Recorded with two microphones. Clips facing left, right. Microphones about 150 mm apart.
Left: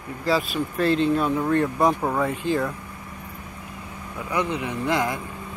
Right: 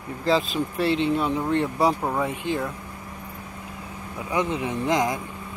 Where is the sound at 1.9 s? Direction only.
5° right (ahead or behind).